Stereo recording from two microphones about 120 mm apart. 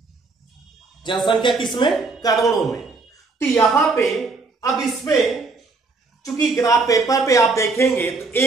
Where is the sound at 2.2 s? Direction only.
30° left (ahead or behind).